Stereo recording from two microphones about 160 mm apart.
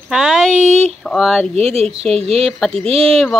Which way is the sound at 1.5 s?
40° right (ahead or behind).